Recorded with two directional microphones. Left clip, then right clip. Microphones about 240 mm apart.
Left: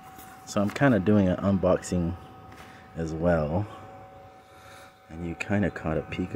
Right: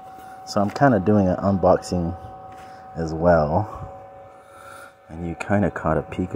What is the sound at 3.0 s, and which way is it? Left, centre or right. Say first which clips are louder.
Speech: right 8 dB; centre.